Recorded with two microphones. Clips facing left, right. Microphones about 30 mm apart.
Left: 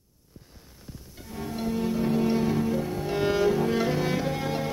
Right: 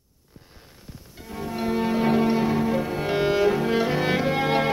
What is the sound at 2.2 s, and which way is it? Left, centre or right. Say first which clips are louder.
Music: right 3 dB; right.